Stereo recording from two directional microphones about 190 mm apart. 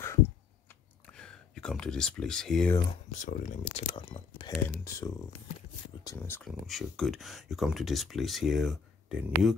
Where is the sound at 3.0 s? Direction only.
40° left (ahead or behind).